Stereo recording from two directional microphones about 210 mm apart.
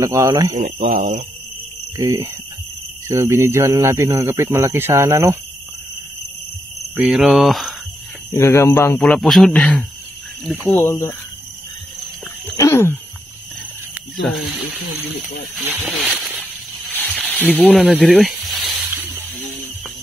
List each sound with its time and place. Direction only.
0.0 s speech: 15° right (ahead or behind)
0.6 s speech: 35° right (ahead or behind)
2.0 s speech: 15° right (ahead or behind)
7.0 s speech: centre (ahead or behind)
8.3 s speech: 15° left (ahead or behind)
9.0 s speech: centre (ahead or behind)
12.5 s a sound: 15° left (ahead or behind)
14.2 s speech: centre (ahead or behind)
16.9 s a sound: 5° left (ahead or behind)